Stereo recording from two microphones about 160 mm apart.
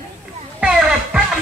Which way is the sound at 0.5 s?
5° right (ahead or behind).